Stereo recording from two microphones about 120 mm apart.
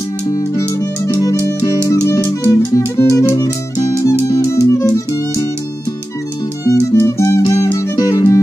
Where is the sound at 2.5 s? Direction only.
25° left (ahead or behind).